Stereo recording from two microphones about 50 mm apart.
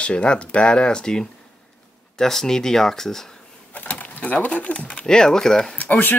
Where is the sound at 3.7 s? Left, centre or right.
Left.